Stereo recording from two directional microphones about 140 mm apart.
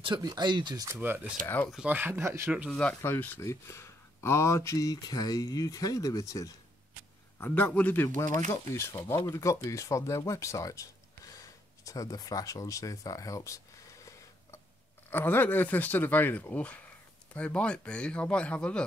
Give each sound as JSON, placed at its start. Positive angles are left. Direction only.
{"t": 0.0, "sound": "speech", "side_deg": -30}
{"t": 0.9, "sound": "speech", "side_deg": -15}
{"t": 2.7, "sound": "speech", "side_deg": 5}
{"t": 7.3, "sound": "speech", "side_deg": 15}
{"t": 15.0, "sound": "speech", "side_deg": 15}